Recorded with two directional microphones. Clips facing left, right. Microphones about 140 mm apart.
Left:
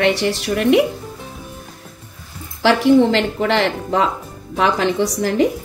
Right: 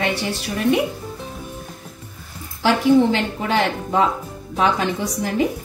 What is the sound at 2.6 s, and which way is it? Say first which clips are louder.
A woman's voice: left 3 dB; 75° left (ahead or behind).